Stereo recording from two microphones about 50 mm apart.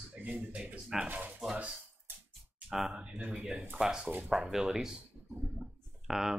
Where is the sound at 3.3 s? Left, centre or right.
Centre.